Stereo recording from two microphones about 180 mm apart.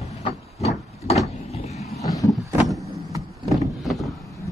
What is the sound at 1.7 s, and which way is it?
Boat, 35° left (ahead or behind).